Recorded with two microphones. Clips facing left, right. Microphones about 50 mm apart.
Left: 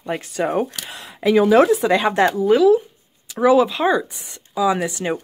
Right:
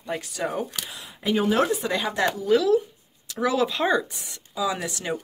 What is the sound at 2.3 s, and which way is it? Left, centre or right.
Speech, left.